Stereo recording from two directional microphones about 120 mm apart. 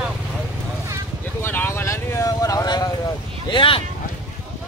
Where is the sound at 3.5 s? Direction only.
45° left (ahead or behind).